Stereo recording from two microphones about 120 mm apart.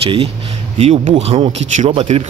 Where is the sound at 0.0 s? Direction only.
50° right (ahead or behind).